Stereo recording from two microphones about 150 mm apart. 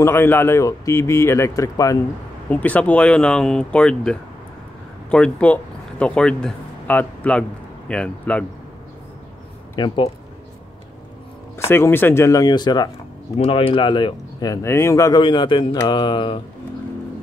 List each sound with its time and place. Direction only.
0.0 s a man's voice: 15° left (ahead or behind)
2.5 s speech: 10° left (ahead or behind)
9.8 s speech: 35° left (ahead or behind)
11.5 s speech: 15° left (ahead or behind)
13.4 s a man's voice: 40° left (ahead or behind); by 15.2 s 20° left (ahead or behind)
15.2 s speech: 35° left (ahead or behind)